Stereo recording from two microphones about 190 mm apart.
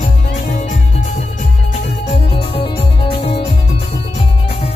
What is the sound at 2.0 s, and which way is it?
Music, 30° left (ahead or behind).